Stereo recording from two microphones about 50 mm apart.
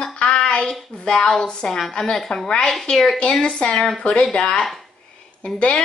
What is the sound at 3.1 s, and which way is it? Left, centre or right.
A woman's voice, left.